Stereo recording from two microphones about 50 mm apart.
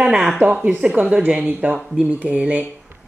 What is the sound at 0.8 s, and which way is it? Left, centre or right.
Speech, right.